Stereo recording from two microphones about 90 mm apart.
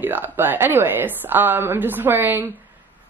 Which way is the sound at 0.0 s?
25° right (ahead or behind).